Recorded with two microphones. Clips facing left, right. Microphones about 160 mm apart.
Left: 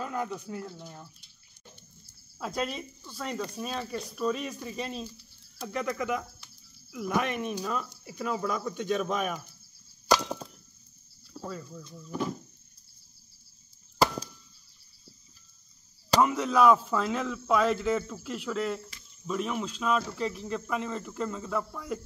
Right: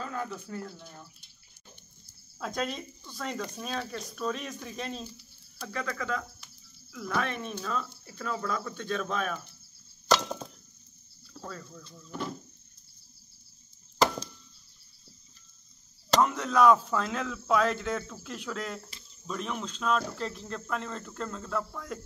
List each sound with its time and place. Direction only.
0.0 s speech: 15° left (ahead or behind)
2.3 s speech: 5° left (ahead or behind)
5.7 s speech: 15° left (ahead or behind)
10.0 s chink: 10° left (ahead or behind)
11.4 s speech: 10° left (ahead or behind)
16.1 s speech: 10° left (ahead or behind)